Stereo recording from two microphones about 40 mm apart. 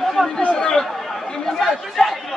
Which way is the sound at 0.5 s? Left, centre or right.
Centre.